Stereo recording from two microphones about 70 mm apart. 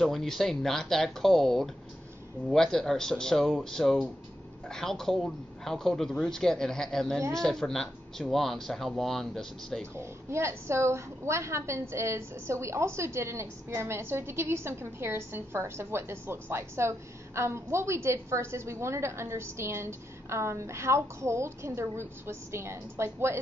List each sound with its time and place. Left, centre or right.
0.0 s a man's voice: centre
9.9 s a woman's voice: right